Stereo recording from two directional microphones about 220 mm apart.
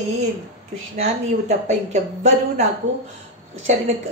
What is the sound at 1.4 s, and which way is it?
Speech, 30° right (ahead or behind).